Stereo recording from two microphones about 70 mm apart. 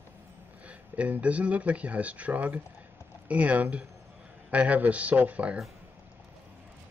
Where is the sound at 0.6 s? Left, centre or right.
Centre.